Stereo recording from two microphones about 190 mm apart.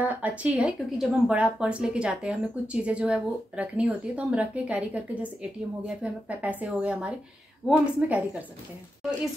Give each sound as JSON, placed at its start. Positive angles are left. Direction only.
{"t": 0.0, "sound": "speech", "side_deg": -5}